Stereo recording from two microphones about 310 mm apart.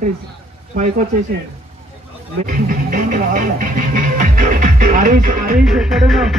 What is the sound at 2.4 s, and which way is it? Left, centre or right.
Speech, right.